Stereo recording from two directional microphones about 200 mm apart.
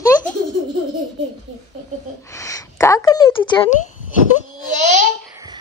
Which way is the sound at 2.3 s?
15° left (ahead or behind).